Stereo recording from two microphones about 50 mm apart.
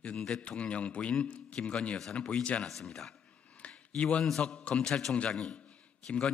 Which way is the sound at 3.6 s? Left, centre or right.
Left.